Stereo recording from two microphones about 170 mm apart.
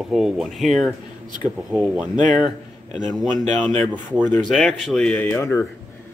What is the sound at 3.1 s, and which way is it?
Speech, 5° left (ahead or behind).